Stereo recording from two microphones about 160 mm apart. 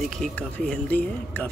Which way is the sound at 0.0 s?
5° left (ahead or behind).